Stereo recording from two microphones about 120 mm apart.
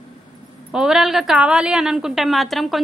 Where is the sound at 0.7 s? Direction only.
5° right (ahead or behind).